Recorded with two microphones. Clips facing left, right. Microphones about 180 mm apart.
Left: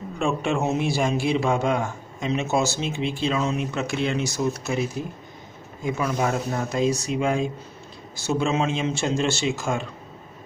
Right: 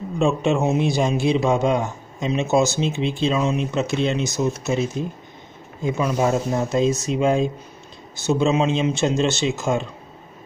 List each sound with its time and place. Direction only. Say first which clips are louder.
0.2 s a man's voice: right 4 dB; 20° right (ahead or behind)